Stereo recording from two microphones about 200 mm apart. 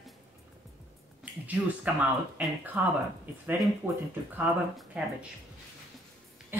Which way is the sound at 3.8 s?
10° right (ahead or behind).